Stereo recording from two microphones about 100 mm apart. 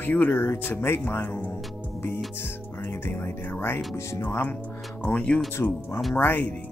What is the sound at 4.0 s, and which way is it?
Speech, 30° left (ahead or behind).